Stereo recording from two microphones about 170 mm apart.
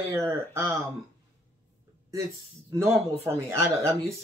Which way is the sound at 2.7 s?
15° right (ahead or behind).